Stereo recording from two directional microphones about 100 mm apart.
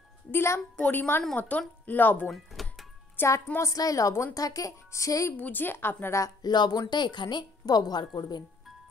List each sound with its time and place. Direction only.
0.3 s a woman's voice: 25° left (ahead or behind)
2.3 s doorbell: centre (ahead or behind)
3.2 s speech: 30° left (ahead or behind)
5.4 s a woman's voice: 20° left (ahead or behind)
6.4 s a woman's voice: 45° left (ahead or behind)